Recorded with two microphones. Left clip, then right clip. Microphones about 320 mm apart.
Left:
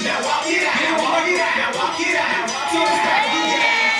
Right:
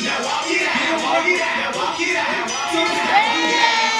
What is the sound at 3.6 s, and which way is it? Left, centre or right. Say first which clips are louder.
Music: right 1 dB; centre.